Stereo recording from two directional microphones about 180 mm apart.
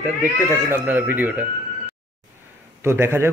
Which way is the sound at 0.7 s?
10° right (ahead or behind).